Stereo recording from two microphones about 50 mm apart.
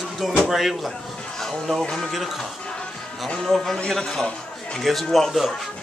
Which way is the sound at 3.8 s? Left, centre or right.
Centre.